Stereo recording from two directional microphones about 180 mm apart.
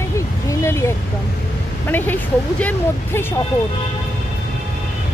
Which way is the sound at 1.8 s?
10° left (ahead or behind).